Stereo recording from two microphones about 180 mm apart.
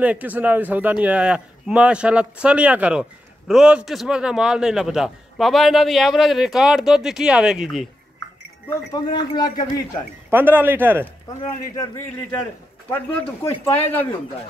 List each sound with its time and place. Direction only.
0.0 s speech: 10° right (ahead or behind)
8.9 s speech: 25° left (ahead or behind)
10.3 s speech: 10° right (ahead or behind)
11.7 s speech: 15° left (ahead or behind)